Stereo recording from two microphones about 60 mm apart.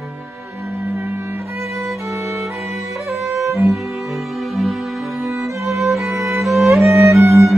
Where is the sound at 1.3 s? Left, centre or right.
Right.